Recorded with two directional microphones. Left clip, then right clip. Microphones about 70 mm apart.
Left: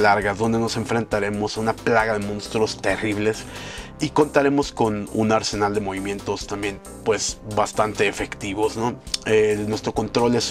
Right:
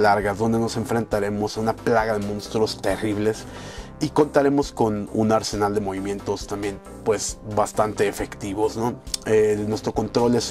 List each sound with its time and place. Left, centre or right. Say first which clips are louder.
0.3 s speech: left 1 dB; right
6.2 s speech: left 1 dB; right